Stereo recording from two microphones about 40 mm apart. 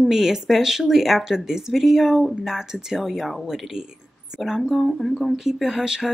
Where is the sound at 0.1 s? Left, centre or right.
Centre.